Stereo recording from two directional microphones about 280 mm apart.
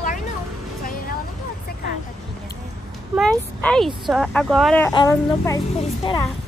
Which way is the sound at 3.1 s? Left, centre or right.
Centre.